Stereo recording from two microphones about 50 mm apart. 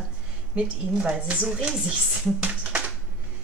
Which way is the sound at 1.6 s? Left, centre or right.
Centre.